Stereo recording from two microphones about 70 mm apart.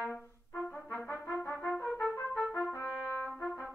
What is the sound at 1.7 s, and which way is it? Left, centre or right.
Trumpet, centre.